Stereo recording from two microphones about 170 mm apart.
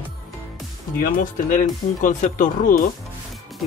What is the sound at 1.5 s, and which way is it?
Speech, 50° left (ahead or behind).